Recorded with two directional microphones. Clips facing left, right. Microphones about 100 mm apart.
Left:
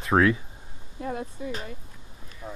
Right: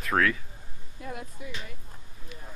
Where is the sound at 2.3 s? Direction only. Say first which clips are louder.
Left 2 dB; 40° left (ahead or behind).